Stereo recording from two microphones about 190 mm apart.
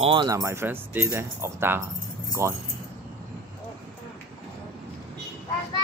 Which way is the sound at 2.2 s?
15° right (ahead or behind).